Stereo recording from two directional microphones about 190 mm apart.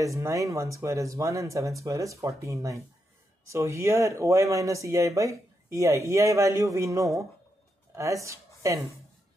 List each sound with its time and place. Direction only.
0.0 s speech: 15° right (ahead or behind)